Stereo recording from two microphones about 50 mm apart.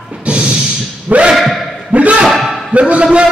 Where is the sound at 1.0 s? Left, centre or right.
Right.